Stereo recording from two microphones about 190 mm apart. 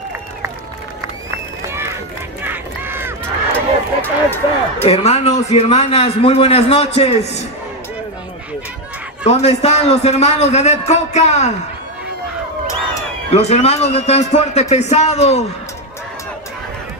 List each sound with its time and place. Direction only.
2.4 s run: 10° right (ahead or behind)
3.5 s a sound: 10° left (ahead or behind)
4.8 s a man's voice: 35° left (ahead or behind)
9.2 s a man's voice: 35° left (ahead or behind)
13.3 s a man's voice: 35° left (ahead or behind)